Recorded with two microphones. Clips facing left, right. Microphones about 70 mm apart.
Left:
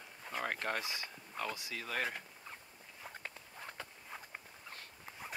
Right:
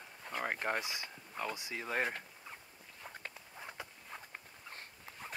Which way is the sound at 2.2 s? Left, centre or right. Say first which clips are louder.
Even; centre.